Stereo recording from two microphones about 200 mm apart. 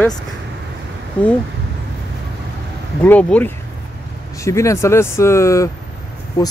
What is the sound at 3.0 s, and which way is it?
Speech, 10° left (ahead or behind).